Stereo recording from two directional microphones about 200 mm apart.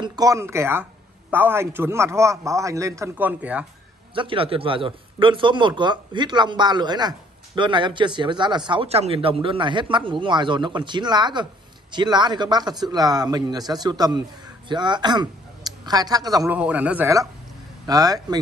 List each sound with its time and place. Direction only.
0.0 s a man's voice: 20° right (ahead or behind)
4.1 s speech: 25° right (ahead or behind)
16.5 s a man's voice: 5° right (ahead or behind)